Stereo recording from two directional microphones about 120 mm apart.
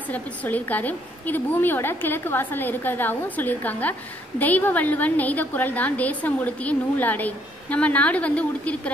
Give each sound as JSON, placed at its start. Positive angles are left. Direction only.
{"t": 0.1, "sound": "a woman's voice", "side_deg": 15}